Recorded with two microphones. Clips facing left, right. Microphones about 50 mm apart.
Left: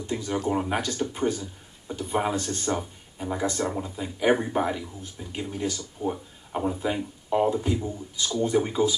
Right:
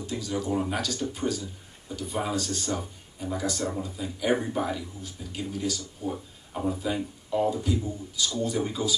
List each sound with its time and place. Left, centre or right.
0.0 s speech: left